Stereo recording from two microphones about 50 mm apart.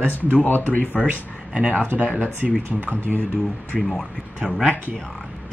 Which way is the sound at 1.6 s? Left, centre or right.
Centre.